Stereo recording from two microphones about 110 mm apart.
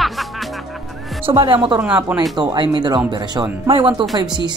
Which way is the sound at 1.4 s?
45° right (ahead or behind).